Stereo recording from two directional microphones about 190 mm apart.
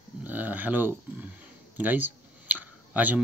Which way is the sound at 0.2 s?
10° right (ahead or behind).